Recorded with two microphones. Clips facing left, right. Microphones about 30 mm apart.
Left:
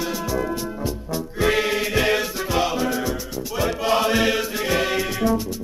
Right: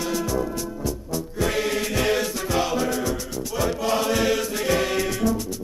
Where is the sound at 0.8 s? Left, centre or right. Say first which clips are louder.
Left 1 dB; left.